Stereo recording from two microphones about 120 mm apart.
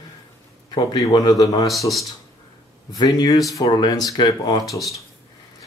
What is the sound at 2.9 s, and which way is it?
Speech, 35° left (ahead or behind).